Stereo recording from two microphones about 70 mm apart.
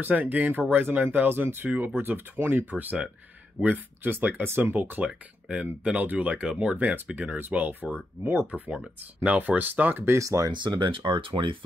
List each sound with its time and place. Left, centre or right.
0.0 s speech: right
2.6 s speech: right
5.5 s speech: centre
10.0 s speech: right
10.5 s speech: right